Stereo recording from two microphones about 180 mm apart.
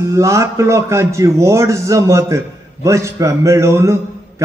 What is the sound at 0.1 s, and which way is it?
A man's voice, 15° right (ahead or behind).